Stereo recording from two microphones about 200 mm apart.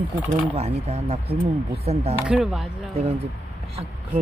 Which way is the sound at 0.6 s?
30° right (ahead or behind).